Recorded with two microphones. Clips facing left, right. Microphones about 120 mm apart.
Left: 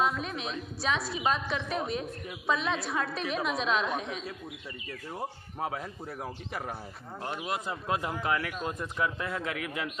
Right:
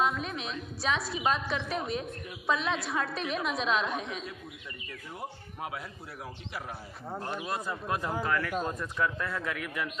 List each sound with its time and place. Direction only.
0.0 s a woman's voice: centre (ahead or behind)
7.4 s speech: 20° left (ahead or behind)